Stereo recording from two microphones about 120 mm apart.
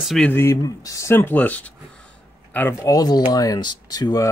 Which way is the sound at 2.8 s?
30° left (ahead or behind).